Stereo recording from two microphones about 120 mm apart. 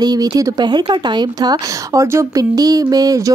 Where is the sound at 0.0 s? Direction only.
30° right (ahead or behind).